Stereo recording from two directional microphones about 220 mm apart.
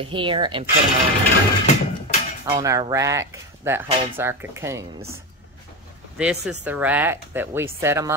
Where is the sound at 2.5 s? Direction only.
15° right (ahead or behind).